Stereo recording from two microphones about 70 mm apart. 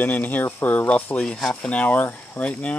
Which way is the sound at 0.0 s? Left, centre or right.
Left.